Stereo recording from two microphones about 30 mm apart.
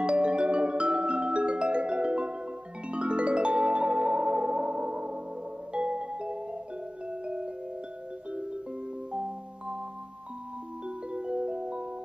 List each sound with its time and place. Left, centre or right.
0.0 s music: right
9.1 s music: right
11.1 s music: right